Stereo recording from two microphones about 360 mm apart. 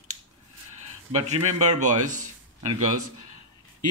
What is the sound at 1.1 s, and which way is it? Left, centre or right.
Speech, centre.